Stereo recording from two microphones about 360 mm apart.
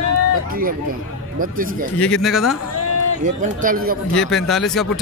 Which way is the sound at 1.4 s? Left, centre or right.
Right.